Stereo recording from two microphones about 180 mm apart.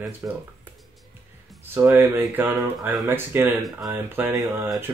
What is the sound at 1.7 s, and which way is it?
Speech, 15° right (ahead or behind).